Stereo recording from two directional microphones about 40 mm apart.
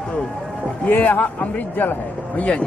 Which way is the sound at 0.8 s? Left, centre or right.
Left.